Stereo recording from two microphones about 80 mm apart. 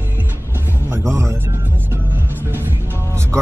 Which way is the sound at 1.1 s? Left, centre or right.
Right.